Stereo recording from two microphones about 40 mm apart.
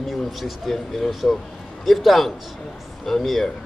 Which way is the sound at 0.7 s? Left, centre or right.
Centre.